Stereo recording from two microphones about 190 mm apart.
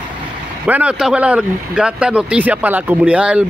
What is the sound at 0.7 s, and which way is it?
Speech, 5° right (ahead or behind).